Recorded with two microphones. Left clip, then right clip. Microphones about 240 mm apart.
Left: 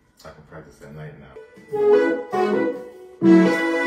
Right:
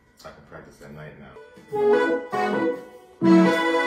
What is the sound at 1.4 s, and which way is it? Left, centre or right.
Music, right.